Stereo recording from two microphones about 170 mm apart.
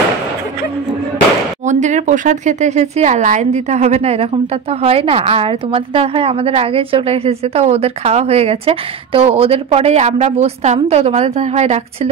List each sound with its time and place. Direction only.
1.7 s speech: 45° right (ahead or behind)